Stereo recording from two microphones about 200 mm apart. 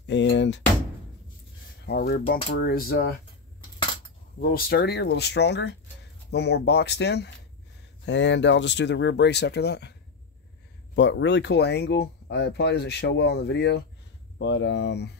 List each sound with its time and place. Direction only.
0.0 s a sound: 60° left (ahead or behind)
1.9 s speech: 45° left (ahead or behind)
4.4 s speech: 55° left (ahead or behind)
11.0 s speech: 65° left (ahead or behind)